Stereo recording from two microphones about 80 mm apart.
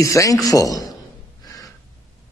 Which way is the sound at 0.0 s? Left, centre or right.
Left.